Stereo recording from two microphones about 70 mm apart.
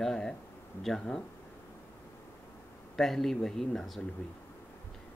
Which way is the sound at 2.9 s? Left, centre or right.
Centre.